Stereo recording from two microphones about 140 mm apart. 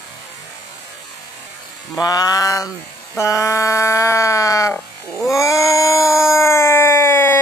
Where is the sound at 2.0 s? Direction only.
25° left (ahead or behind).